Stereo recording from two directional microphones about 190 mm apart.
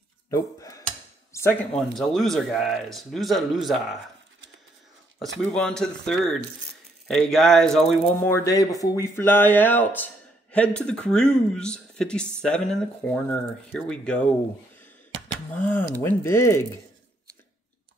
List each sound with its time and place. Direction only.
0.3 s speech: 15° left (ahead or behind); by 4.0 s centre (ahead or behind)
5.5 s speech: 5° left (ahead or behind)
8.3 s speech: 15° left (ahead or behind)
15.5 s speech: 10° left (ahead or behind)